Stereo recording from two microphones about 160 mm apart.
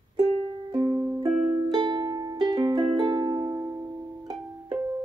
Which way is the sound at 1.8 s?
30° right (ahead or behind).